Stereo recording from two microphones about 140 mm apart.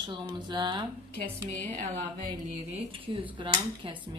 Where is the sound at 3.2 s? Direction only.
35° right (ahead or behind).